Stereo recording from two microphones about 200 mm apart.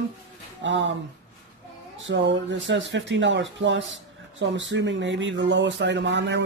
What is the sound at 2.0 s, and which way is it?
Speech, 65° right (ahead or behind).